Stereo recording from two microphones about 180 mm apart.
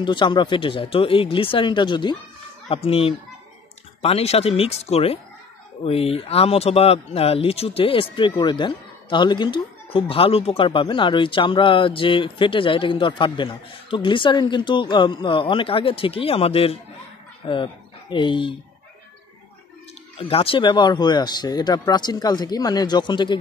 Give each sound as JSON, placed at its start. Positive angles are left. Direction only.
{"t": 0.0, "sound": "speech", "side_deg": 25}
{"t": 18.1, "sound": "speech", "side_deg": 25}
{"t": 20.2, "sound": "speech", "side_deg": 30}